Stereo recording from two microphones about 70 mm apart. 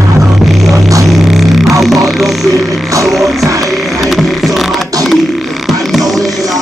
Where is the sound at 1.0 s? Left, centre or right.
Centre.